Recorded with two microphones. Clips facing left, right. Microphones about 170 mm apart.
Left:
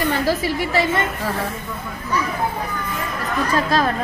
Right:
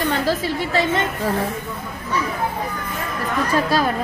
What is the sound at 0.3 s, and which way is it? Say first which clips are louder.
Speech: left 1 dB; 10° left (ahead or behind).